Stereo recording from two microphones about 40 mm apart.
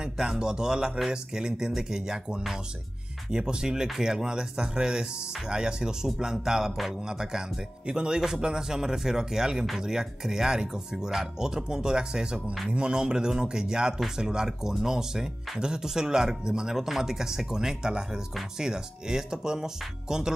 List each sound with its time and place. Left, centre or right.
0.0 s speech: centre